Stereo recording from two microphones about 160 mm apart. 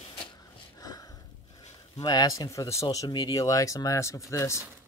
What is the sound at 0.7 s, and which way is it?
Sniff, 25° left (ahead or behind).